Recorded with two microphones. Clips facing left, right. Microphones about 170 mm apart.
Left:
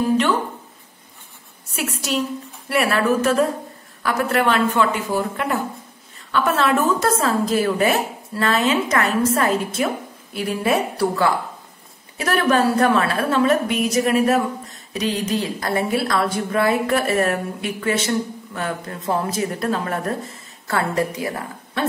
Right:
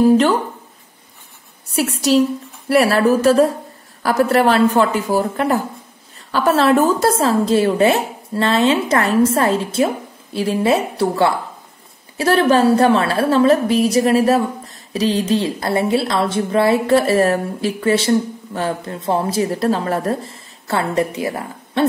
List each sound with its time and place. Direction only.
1.8 s a woman's voice: 35° right (ahead or behind)